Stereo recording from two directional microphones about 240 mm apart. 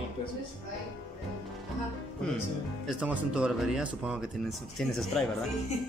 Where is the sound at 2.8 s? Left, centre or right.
Centre.